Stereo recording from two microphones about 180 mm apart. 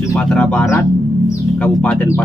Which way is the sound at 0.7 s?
15° left (ahead or behind).